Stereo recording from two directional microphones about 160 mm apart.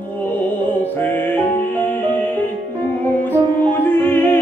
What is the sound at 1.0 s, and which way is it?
Music, 10° left (ahead or behind).